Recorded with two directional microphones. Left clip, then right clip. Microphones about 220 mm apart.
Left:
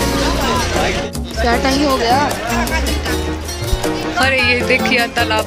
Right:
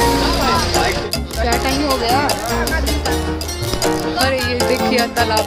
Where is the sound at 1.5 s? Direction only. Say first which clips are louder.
Left 3 dB; 50° left (ahead or behind).